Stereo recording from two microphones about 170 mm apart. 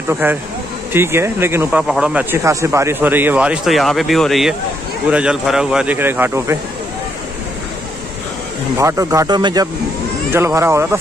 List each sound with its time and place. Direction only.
0.1 s speech: 10° right (ahead or behind)
2.3 s speech: 15° right (ahead or behind)
8.7 s speech: 20° right (ahead or behind)